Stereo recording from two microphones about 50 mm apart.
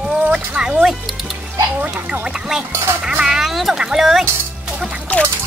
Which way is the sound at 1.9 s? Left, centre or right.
Right.